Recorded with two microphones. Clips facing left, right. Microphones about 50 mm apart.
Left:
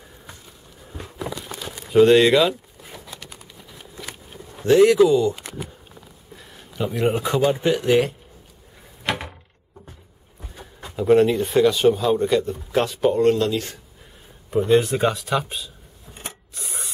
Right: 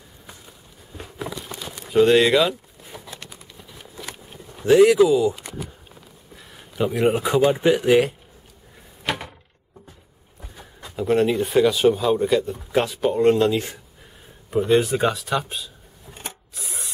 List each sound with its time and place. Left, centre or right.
0.9 s a sound: centre
1.9 s speech: centre
4.6 s speech: centre
6.3 s a sound: centre
7.5 s speech: centre
10.4 s a sound: centre
11.0 s speech: centre
13.2 s speech: centre
14.5 s speech: centre
16.2 s rub: centre